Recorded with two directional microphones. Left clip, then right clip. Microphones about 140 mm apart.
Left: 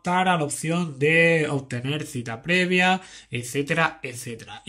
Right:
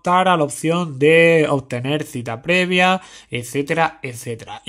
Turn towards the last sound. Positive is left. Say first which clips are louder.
# right 6 dB
turn(degrees=-40)  # may be behind; listen again after turning